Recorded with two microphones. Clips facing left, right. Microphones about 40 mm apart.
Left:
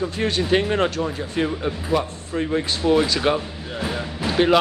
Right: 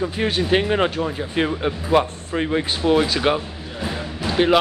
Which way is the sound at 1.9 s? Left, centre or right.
Right.